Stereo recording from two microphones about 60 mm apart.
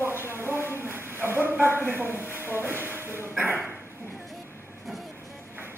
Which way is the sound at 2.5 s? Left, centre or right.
Right.